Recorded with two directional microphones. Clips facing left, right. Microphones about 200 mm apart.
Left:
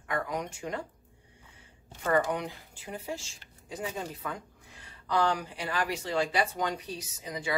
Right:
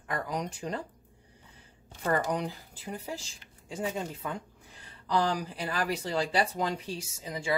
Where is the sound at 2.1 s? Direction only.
35° right (ahead or behind).